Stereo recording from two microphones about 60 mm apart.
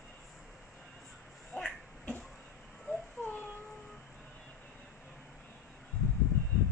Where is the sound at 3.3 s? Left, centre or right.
Left.